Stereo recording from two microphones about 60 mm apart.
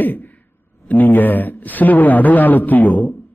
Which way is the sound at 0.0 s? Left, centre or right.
Left.